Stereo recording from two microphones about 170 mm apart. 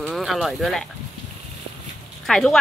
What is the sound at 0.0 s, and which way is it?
Speech, centre (ahead or behind).